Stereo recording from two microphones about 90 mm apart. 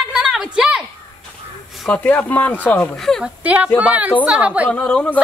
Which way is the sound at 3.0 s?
5° left (ahead or behind).